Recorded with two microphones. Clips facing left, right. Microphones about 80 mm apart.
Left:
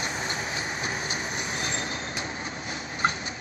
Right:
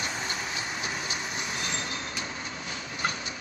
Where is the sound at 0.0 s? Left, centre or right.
Left.